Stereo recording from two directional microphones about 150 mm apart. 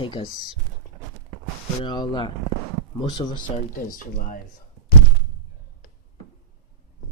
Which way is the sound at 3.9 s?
65° left (ahead or behind).